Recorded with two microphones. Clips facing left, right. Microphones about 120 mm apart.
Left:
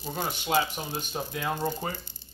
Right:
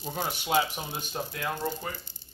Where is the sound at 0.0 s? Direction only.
Centre (ahead or behind).